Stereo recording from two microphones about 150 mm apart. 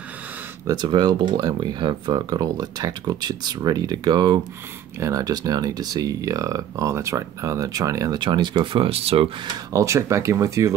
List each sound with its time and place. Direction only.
0.7 s speech: 30° right (ahead or behind)
9.7 s speech: 20° right (ahead or behind)